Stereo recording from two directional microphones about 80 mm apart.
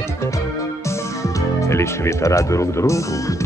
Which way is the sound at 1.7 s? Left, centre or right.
Left.